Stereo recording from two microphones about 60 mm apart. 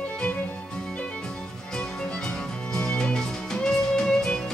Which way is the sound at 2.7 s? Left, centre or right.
Centre.